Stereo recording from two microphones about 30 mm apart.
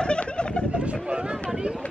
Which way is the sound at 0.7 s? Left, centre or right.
Right.